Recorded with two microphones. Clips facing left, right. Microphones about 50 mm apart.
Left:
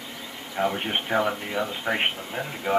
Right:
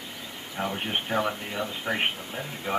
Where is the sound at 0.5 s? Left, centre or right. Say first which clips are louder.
Left 4 dB; left.